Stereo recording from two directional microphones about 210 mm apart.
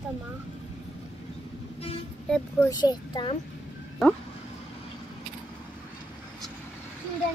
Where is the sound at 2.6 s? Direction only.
20° left (ahead or behind).